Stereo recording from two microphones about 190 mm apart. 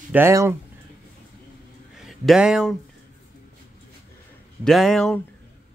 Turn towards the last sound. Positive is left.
turn(degrees=5)  # may be behind; listen again after turning